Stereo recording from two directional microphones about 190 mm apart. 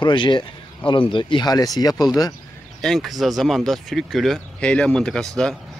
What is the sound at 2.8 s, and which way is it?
Speech, centre (ahead or behind).